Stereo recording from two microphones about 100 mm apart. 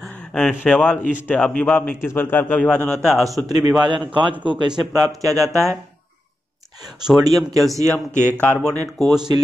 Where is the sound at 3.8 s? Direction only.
55° right (ahead or behind).